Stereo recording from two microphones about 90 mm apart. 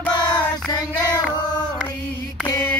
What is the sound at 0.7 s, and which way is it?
Child singing, 45° left (ahead or behind).